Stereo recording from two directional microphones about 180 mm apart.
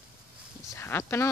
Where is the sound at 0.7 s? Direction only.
15° left (ahead or behind).